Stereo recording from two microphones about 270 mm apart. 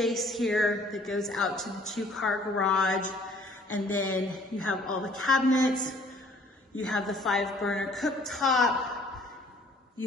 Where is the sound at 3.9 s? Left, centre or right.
Left.